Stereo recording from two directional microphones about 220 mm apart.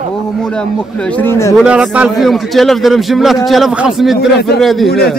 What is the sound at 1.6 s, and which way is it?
A man's voice, 5° right (ahead or behind).